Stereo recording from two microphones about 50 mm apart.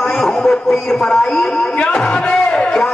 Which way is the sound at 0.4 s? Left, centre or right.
Centre.